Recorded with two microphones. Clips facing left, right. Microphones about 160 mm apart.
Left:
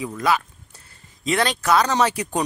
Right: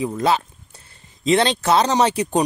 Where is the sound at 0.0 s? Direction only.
25° right (ahead or behind).